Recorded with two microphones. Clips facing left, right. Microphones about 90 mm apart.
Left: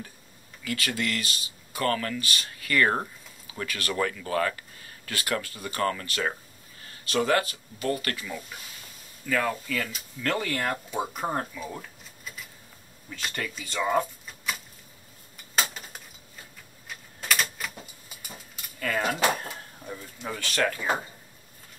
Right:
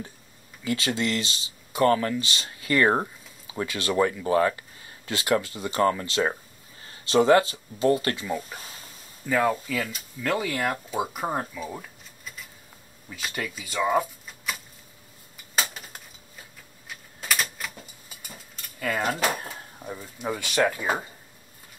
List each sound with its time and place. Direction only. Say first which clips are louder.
0.7 s speech: right 4 dB; 25° right (ahead or behind)
9.2 s speech: right 4 dB; 15° right (ahead or behind); by 14.6 s centre (ahead or behind)
15.5 s a sound: even; centre (ahead or behind)
16.8 s typewriter: even; centre (ahead or behind)
18.8 s speech: right 1 dB; 10° right (ahead or behind)
19.3 s drawer open or close: even; 5° right (ahead or behind)
19.8 s speech: right 5 dB; 15° right (ahead or behind)